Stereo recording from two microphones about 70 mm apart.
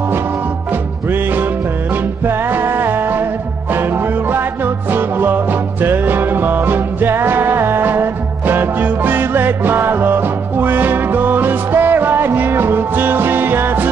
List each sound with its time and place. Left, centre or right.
2.2 s music: right
4.9 s music: right